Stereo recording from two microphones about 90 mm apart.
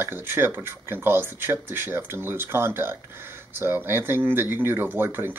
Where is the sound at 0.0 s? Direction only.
25° right (ahead or behind).